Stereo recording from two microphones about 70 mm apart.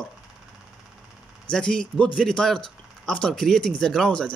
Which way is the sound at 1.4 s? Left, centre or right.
Centre.